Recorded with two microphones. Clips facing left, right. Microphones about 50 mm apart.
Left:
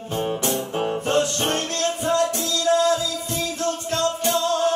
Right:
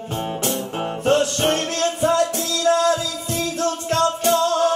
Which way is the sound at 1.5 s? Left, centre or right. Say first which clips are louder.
Right 3 dB; right.